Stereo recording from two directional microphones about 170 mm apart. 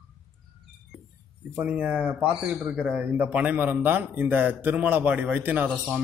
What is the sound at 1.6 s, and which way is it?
A man's voice, 10° right (ahead or behind).